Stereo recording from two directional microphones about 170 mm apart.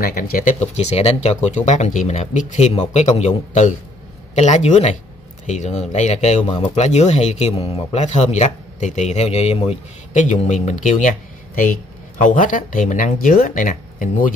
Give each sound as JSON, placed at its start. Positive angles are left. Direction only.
{"t": 0.0, "sound": "speech", "side_deg": 60}